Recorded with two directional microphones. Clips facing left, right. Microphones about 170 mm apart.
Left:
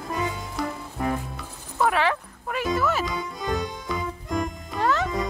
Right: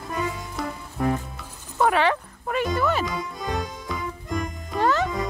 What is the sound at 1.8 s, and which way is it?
Music, centre (ahead or behind).